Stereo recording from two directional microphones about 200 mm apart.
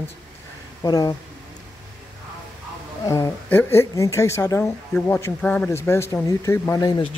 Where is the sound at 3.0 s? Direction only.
15° left (ahead or behind).